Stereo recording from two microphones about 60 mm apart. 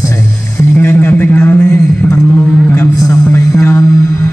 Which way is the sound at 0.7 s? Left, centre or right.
Left.